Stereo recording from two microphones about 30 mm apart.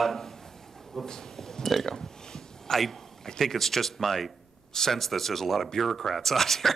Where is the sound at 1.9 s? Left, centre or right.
Left.